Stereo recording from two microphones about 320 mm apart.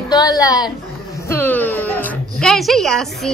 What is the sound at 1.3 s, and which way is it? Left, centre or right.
Music, centre.